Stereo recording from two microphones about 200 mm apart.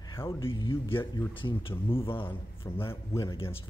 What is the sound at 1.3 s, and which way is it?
Speech, 25° left (ahead or behind).